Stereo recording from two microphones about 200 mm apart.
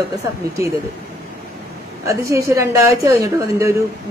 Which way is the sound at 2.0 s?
15° right (ahead or behind).